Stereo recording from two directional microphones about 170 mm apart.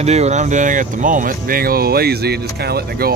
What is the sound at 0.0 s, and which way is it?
Speech, 40° right (ahead or behind).